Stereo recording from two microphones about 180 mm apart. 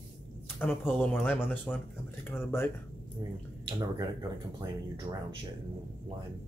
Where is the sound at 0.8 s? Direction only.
5° left (ahead or behind).